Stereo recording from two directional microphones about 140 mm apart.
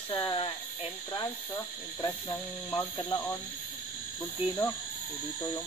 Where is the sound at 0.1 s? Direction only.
35° left (ahead or behind).